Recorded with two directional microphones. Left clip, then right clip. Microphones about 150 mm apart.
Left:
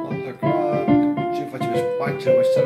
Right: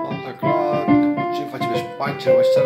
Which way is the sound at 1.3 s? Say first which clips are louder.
Right 1 dB; 5° right (ahead or behind).